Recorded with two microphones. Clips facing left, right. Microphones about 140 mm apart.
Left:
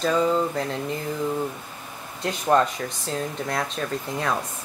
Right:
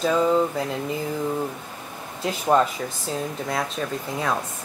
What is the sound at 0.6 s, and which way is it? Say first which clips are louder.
Speech: even; 5° right (ahead or behind).